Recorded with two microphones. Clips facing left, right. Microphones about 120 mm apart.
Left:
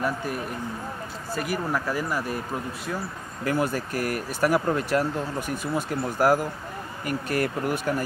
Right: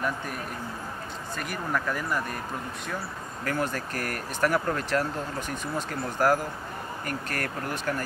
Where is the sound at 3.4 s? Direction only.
10° left (ahead or behind).